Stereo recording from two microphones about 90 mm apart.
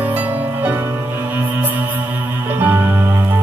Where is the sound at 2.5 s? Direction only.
20° right (ahead or behind).